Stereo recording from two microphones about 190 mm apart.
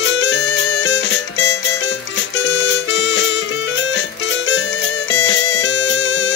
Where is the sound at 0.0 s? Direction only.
75° left (ahead or behind).